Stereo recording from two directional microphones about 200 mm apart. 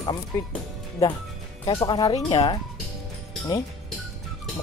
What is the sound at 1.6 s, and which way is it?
Speech, 20° left (ahead or behind).